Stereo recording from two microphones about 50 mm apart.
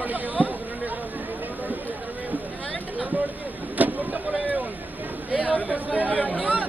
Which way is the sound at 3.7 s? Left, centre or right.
Right.